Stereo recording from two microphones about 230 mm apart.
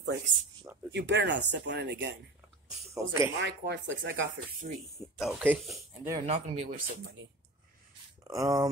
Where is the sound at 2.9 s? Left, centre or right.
Centre.